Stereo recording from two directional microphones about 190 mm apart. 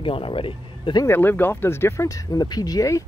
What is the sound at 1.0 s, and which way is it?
Speech, 10° left (ahead or behind).